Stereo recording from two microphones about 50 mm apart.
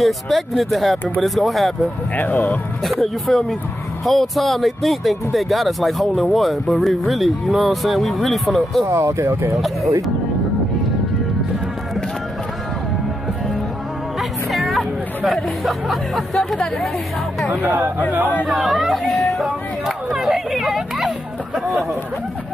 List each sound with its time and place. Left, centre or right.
0.0 s speech: centre
2.1 s speech: left
2.8 s speech: centre
8.8 s speech: right
14.5 s music: centre
17.6 s speech: right
18.5 s speech: centre